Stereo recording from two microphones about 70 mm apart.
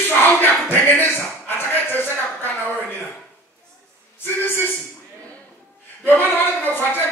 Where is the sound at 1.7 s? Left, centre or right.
Left.